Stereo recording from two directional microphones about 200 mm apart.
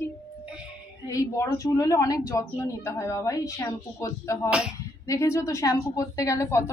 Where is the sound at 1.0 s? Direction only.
15° left (ahead or behind).